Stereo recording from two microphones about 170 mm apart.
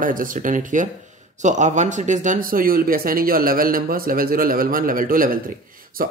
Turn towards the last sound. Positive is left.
turn(degrees=-55)  # may be behind; listen again after turning